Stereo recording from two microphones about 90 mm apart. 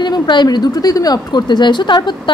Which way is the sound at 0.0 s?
55° left (ahead or behind).